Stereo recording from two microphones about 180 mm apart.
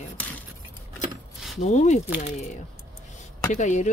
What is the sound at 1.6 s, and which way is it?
Speech, 40° left (ahead or behind).